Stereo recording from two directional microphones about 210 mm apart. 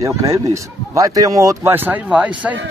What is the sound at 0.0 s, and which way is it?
Speech, 15° right (ahead or behind).